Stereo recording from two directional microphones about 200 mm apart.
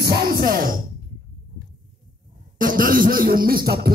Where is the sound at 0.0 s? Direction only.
50° right (ahead or behind).